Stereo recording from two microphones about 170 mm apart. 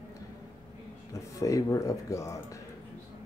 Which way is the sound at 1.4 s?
20° left (ahead or behind).